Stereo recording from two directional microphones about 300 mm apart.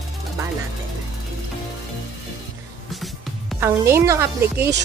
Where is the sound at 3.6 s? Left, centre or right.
Centre.